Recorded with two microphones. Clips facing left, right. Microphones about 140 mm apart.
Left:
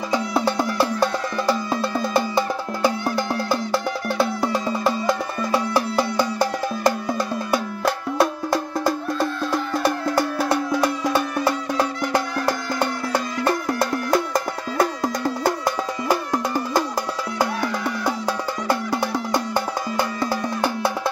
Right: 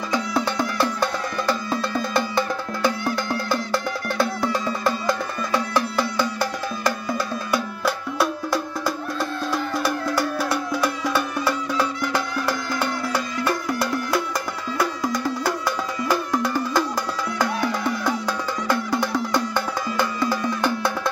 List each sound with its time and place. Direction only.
0.1 s music: 30° left (ahead or behind)
2.1 s music: 10° left (ahead or behind)
4.6 s music: 30° left (ahead or behind)
5.5 s music: 10° left (ahead or behind)
10.5 s music: 25° left (ahead or behind)
11.7 s music: 45° left (ahead or behind)
13.7 s music: 50° left (ahead or behind)
18.0 s music: 35° left (ahead or behind)